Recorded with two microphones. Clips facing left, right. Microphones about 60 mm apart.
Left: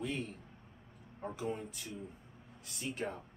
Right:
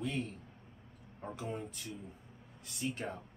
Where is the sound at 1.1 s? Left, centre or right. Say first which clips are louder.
Left 2 dB; centre.